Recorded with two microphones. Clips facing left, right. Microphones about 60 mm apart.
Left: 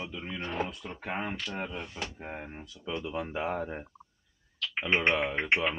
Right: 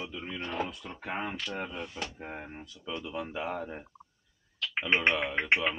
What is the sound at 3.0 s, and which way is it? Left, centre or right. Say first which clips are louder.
Speech: left 2 dB; centre.